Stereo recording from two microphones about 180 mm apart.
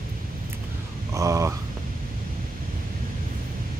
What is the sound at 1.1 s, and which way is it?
Speech, 15° right (ahead or behind).